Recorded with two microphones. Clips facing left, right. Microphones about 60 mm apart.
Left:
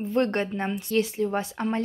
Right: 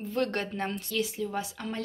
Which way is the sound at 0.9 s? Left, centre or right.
Left.